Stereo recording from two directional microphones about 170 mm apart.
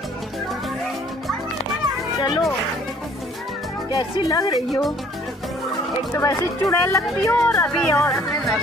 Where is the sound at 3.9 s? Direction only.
20° left (ahead or behind).